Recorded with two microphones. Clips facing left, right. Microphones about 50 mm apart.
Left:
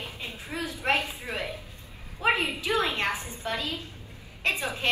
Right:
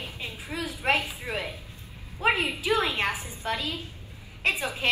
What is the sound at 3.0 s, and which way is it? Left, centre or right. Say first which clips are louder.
Speech: even; left.